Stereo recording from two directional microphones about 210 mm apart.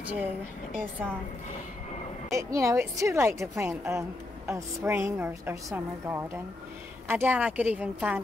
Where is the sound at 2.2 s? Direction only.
15° right (ahead or behind).